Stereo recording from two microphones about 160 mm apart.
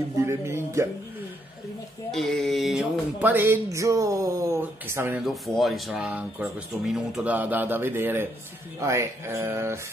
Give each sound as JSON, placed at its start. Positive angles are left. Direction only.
{"t": 0.2, "sound": "speech", "side_deg": -15}
{"t": 2.0, "sound": "speech", "side_deg": 0}
{"t": 5.2, "sound": "speech", "side_deg": 0}